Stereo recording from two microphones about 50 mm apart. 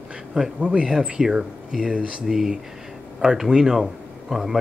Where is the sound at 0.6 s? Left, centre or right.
Centre.